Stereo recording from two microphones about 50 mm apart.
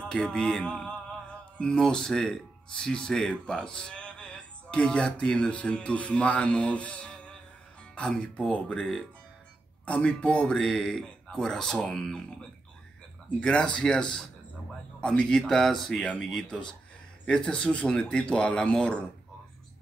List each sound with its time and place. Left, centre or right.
0.1 s music: centre
1.9 s speech: centre
13.4 s speech: centre
15.4 s speech: centre